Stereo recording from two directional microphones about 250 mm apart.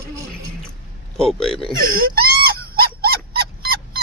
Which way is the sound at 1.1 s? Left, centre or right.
Centre.